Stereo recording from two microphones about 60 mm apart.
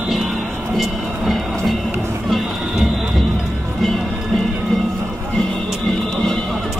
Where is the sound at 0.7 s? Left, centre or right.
Centre.